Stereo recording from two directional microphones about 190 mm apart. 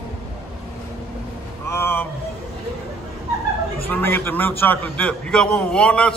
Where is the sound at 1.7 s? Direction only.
10° left (ahead or behind).